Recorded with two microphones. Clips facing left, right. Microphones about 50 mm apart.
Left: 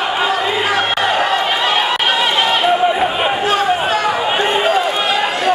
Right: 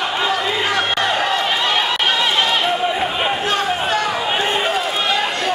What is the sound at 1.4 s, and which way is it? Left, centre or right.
Run, centre.